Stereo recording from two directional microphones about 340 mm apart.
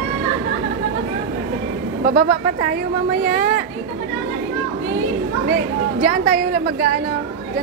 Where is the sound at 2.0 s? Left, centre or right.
Right.